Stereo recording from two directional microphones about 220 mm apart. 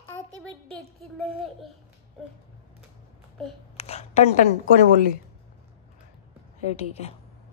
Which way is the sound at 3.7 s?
30° left (ahead or behind).